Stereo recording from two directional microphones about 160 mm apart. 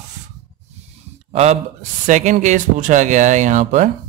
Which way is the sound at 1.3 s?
40° right (ahead or behind).